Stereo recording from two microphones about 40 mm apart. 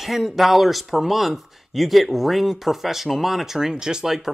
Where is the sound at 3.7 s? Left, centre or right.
Centre.